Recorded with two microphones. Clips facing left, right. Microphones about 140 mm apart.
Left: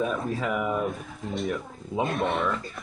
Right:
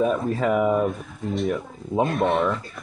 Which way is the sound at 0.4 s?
40° right (ahead or behind).